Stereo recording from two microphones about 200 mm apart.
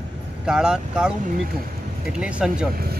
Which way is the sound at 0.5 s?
5° right (ahead or behind).